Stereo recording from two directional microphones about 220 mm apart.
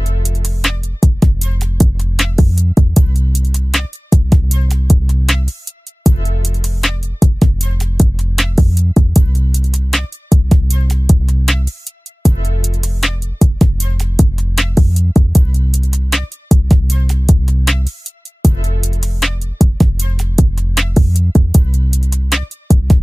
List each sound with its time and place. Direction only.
0.4 s music: centre (ahead or behind)